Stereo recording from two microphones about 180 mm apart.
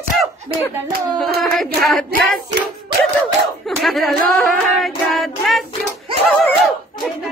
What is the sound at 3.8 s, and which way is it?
Hands, centre (ahead or behind).